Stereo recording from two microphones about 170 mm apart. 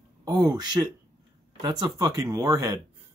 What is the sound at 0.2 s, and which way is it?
Speech, 25° right (ahead or behind).